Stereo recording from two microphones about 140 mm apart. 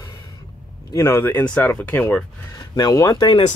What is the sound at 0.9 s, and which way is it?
Speech, 15° left (ahead or behind).